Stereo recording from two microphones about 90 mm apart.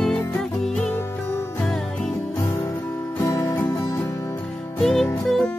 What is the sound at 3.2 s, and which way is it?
Music, 35° left (ahead or behind).